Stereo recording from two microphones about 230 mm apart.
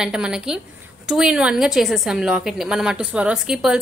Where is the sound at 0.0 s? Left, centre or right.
Centre.